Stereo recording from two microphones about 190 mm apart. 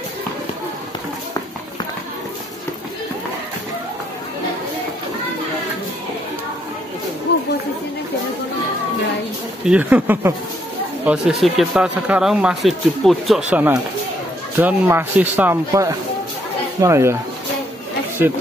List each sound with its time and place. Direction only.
7.3 s chatter: 60° left (ahead or behind)
9.7 s speech: 5° right (ahead or behind)